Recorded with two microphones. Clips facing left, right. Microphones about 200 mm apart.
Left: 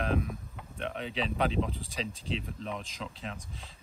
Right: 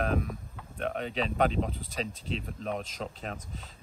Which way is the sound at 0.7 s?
45° right (ahead or behind).